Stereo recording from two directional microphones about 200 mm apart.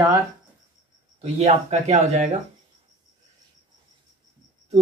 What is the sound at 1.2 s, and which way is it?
Speech, 35° right (ahead or behind).